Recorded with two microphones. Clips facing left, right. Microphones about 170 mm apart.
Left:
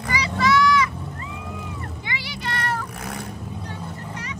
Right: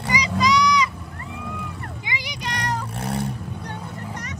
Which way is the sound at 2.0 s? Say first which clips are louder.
Even; 15° right (ahead or behind).